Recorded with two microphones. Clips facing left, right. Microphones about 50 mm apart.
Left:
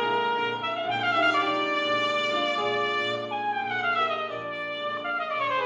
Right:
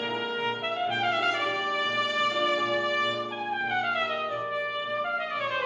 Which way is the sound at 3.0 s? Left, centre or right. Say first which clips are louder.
Left 1 dB; centre.